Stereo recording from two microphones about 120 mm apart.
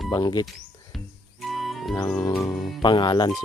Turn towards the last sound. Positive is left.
turn(degrees=40)  # may be behind; listen again after turning